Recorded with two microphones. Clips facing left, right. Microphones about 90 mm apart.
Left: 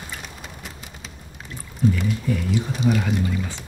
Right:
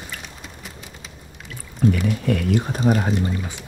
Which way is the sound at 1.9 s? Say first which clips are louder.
Right 3 dB; 65° right (ahead or behind).